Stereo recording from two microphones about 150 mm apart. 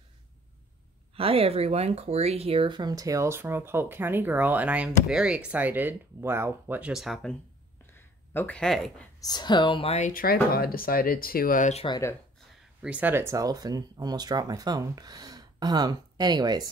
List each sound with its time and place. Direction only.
1.1 s speech: 40° right (ahead or behind); by 7.3 s centre (ahead or behind)
7.8 s a sound: 15° left (ahead or behind)
9.2 s speech: 30° left (ahead or behind); by 10.1 s 45° left (ahead or behind)
10.1 s speech: 90° left; by 11.7 s 65° left (ahead or behind)
11.9 s speech: 20° left (ahead or behind)
12.8 s speech: 10° right (ahead or behind); by 16.7 s 25° right (ahead or behind)